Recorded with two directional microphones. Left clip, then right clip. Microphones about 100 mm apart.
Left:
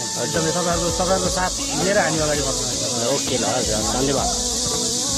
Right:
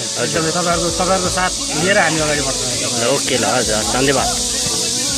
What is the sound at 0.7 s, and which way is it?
Speech, 15° left (ahead or behind).